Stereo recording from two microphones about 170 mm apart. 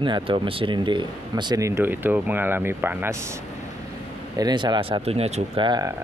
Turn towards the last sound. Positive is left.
turn(degrees=-25)  # may be behind; listen again after turning